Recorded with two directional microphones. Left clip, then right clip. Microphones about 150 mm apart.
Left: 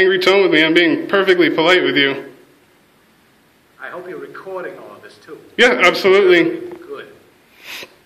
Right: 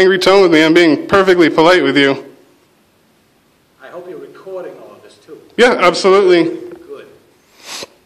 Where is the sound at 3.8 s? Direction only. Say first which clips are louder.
Left 1 dB; centre (ahead or behind).